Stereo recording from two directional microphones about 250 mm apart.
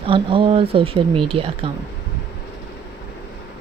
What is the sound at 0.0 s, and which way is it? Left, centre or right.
Speech, right.